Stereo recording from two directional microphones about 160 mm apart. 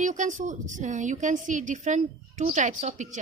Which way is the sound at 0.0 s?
50° right (ahead or behind).